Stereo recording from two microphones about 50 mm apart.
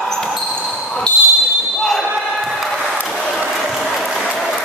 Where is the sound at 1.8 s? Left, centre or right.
Centre.